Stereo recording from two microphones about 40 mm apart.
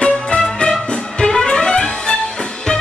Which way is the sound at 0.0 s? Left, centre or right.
Left.